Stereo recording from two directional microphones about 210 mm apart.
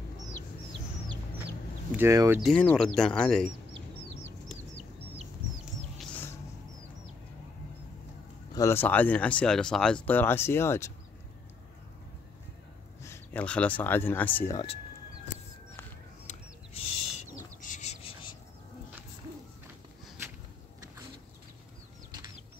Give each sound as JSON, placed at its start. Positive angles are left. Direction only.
{"t": 2.0, "sound": "speech", "side_deg": -15}
{"t": 2.4, "sound": "speech", "side_deg": 5}
{"t": 5.9, "sound": "a sound", "side_deg": 10}
{"t": 8.5, "sound": "speech", "side_deg": 10}
{"t": 13.0, "sound": "speech", "side_deg": 10}
{"t": 16.3, "sound": "bird", "side_deg": 35}